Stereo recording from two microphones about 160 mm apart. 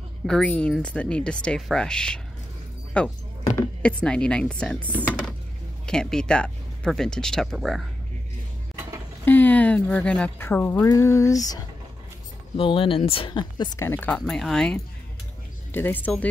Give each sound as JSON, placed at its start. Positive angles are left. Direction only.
{"t": 0.3, "sound": "speech", "side_deg": 5}
{"t": 9.2, "sound": "speech", "side_deg": 10}
{"t": 10.9, "sound": "a sound", "side_deg": 20}
{"t": 12.5, "sound": "speech", "side_deg": 35}
{"t": 13.7, "sound": "speech", "side_deg": 15}